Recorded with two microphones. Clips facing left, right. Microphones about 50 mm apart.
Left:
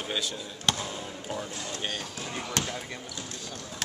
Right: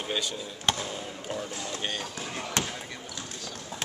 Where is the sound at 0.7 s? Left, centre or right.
Centre.